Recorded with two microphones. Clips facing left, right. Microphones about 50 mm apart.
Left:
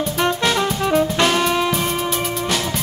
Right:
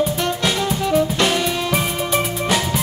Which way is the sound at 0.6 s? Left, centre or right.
Centre.